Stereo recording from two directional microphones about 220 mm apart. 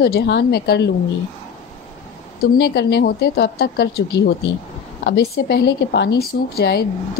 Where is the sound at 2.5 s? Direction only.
50° left (ahead or behind).